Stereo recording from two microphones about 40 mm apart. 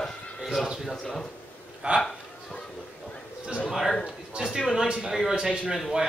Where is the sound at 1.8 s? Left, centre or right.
Right.